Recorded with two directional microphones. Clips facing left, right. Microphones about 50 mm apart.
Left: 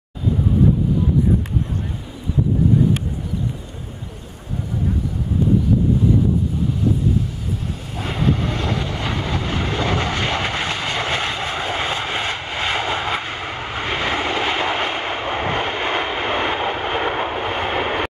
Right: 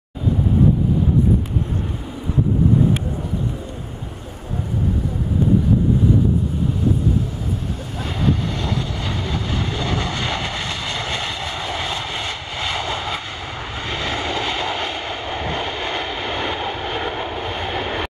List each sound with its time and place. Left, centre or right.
8.0 s vehicle: left